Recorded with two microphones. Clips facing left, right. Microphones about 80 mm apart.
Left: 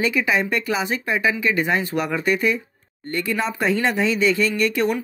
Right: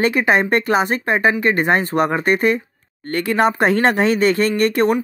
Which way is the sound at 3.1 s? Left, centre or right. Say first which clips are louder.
Right 7 dB; right.